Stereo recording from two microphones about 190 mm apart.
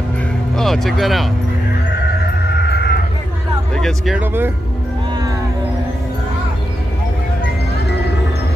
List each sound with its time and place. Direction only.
0.6 s speech: centre (ahead or behind)
2.5 s a sound: 60° left (ahead or behind)
3.7 s speech: centre (ahead or behind)